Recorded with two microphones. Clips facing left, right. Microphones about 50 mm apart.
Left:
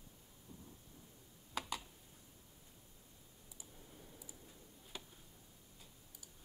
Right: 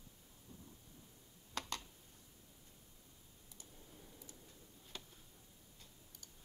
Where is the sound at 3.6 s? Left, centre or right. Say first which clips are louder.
Left 1 dB; centre.